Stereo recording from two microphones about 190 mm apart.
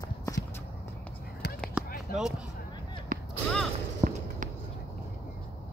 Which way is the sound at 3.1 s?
45° right (ahead or behind).